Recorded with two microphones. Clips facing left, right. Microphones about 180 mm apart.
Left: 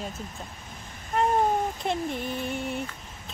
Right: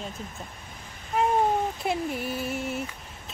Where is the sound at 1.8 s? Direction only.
5° right (ahead or behind).